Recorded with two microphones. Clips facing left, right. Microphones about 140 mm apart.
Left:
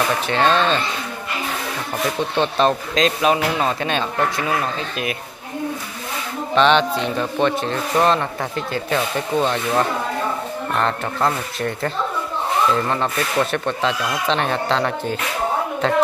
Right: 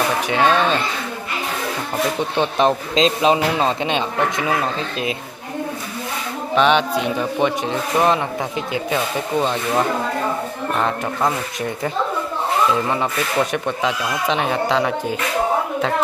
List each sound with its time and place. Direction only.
0.3 s speech: 10° right (ahead or behind)
2.3 s speech: 15° right (ahead or behind)
6.5 s speech: 10° right (ahead or behind)